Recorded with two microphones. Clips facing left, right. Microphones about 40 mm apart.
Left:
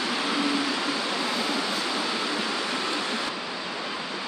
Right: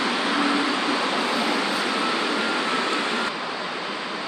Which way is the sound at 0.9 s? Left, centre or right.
Right.